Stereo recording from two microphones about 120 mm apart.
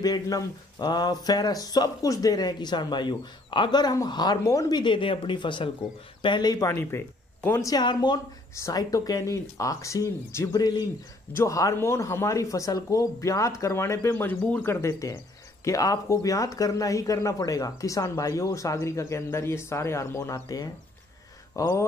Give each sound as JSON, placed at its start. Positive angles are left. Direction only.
{"t": 0.0, "sound": "speech", "side_deg": 35}
{"t": 7.7, "sound": "speech", "side_deg": 35}
{"t": 8.5, "sound": "speech", "side_deg": 25}